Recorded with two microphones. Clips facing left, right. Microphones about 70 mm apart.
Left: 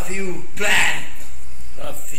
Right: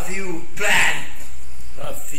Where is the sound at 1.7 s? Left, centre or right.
Centre.